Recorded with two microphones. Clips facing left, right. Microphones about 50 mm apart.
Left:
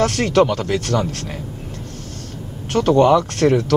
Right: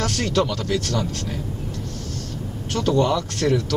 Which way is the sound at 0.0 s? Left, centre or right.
Left.